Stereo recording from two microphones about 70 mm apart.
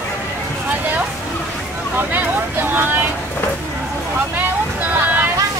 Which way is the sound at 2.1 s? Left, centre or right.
Right.